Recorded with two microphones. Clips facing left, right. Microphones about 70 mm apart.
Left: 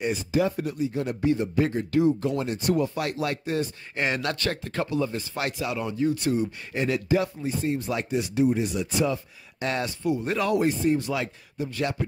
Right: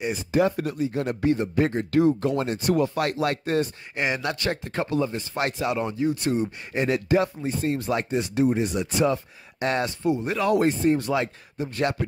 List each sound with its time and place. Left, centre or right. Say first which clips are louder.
0.3 s speech: right 4 dB; right
3.9 s speech: even; centre
4.5 s speech: right 2 dB; right
7.2 s speech: right 2 dB; right
7.9 s speech: right 2 dB; right
10.2 s speech: right 1 dB; centre
10.5 s speech: right 3 dB; right
11.1 s speech: right 3 dB; right